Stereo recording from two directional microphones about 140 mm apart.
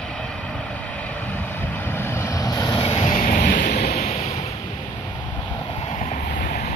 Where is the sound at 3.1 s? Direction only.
65° left (ahead or behind); by 4.6 s 50° left (ahead or behind).